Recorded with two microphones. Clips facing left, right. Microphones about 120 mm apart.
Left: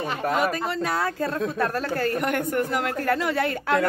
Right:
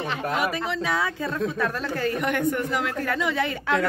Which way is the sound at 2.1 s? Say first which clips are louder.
Even; centre (ahead or behind).